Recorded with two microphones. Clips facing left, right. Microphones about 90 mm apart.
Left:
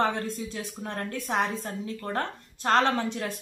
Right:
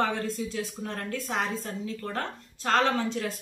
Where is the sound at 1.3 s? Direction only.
35° left (ahead or behind).